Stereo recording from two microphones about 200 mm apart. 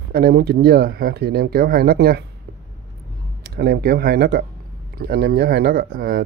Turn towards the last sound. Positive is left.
turn(degrees=-50)  # may be behind; listen again after turning